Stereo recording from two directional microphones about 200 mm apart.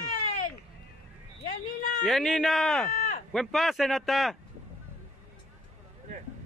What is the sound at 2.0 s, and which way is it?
Speech, centre (ahead or behind).